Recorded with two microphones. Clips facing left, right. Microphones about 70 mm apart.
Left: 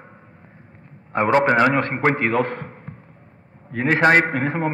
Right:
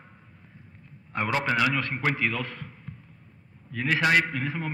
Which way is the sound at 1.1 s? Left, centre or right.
Left.